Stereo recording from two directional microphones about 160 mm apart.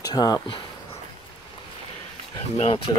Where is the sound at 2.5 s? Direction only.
35° left (ahead or behind).